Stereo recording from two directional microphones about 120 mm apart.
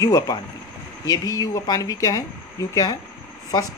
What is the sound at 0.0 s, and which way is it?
Speech, 30° left (ahead or behind).